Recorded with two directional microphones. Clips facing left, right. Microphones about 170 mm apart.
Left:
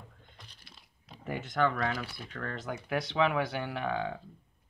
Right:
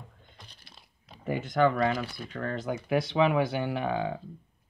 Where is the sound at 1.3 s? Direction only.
5° right (ahead or behind).